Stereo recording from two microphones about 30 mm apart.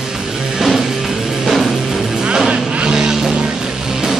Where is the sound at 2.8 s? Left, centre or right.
Right.